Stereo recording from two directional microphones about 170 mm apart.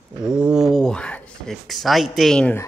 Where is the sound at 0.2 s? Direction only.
5° right (ahead or behind).